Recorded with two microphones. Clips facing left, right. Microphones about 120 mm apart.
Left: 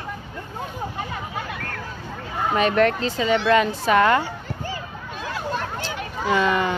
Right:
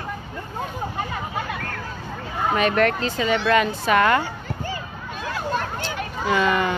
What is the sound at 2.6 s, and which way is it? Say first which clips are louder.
Speech: left 2 dB; 30° left (ahead or behind).